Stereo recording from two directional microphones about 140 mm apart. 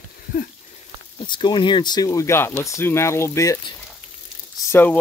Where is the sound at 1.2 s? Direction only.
35° left (ahead or behind).